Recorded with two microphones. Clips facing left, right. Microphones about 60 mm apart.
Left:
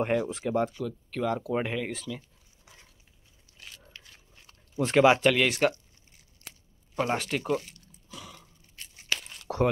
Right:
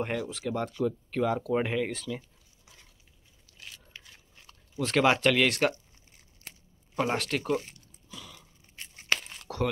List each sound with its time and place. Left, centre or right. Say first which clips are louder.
0.0 s speech: left 5 dB; centre
0.3 s speech: left 2 dB; left
0.6 s speech: left 4 dB; centre
1.2 s speech: right 1 dB; centre
4.5 s a sound: left 3 dB; left
5.0 s speech: left 2 dB; centre
7.0 s speech: even; centre
8.1 s a sound: left 2 dB; centre
8.7 s tearing: right 3 dB; right
9.5 s a sound: left 5 dB; left